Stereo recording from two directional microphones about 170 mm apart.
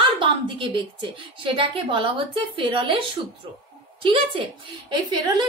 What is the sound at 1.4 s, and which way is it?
A woman's voice, 30° right (ahead or behind).